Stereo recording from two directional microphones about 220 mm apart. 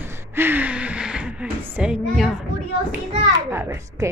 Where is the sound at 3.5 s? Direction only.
10° right (ahead or behind).